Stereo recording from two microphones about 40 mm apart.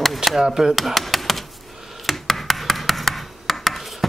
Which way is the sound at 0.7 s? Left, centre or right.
Centre.